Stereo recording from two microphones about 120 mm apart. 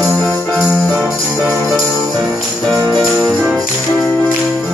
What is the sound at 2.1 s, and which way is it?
Music, centre (ahead or behind).